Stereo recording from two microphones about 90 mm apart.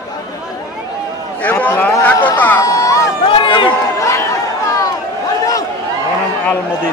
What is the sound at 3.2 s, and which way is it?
Run, 70° left (ahead or behind).